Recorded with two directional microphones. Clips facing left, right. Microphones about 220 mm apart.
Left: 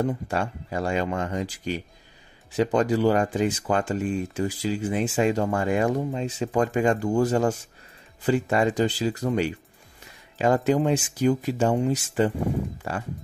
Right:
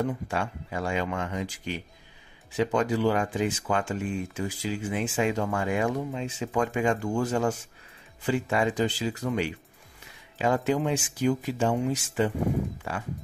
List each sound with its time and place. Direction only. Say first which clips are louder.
0.0 s speech: left 3 dB; 40° left (ahead or behind)